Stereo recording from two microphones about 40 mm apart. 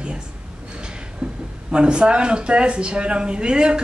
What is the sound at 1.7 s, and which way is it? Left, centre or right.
Speech, right.